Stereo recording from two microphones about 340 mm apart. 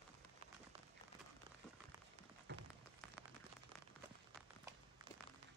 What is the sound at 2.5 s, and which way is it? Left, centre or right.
Rain on surface, right.